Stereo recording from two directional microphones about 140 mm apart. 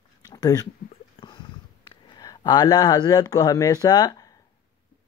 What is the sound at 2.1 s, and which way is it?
Speech, 30° left (ahead or behind).